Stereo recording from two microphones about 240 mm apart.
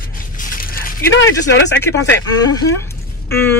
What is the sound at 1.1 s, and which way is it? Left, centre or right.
Speech, left.